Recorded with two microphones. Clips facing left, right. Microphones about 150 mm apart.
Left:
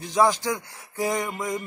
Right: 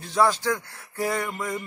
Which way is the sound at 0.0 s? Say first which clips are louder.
Left 1 dB; 15° left (ahead or behind).